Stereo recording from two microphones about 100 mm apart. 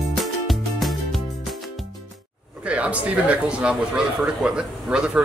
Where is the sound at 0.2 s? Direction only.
Centre (ahead or behind).